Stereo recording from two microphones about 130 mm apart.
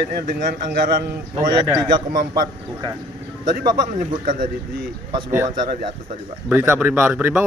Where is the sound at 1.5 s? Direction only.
35° right (ahead or behind).